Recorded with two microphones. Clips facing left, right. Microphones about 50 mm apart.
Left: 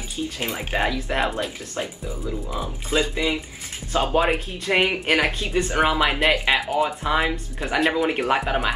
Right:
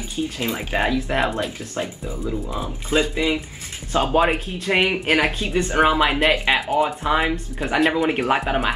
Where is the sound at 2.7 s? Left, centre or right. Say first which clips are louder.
Right 3 dB; centre.